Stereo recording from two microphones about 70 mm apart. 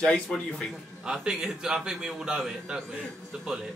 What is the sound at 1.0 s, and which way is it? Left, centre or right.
A man's voice, centre.